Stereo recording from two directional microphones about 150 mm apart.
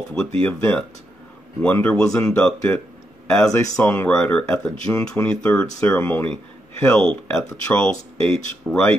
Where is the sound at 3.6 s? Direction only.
15° left (ahead or behind).